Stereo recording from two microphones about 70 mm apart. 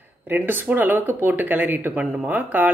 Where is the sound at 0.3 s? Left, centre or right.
Right.